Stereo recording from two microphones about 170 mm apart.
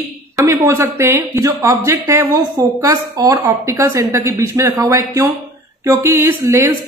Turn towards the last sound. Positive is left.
turn(degrees=-15)  # may be behind; listen again after turning